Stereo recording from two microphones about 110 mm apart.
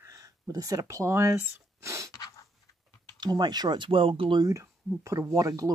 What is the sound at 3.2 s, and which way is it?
Speech, 40° right (ahead or behind).